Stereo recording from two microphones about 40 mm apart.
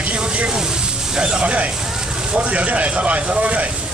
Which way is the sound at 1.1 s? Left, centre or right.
Right.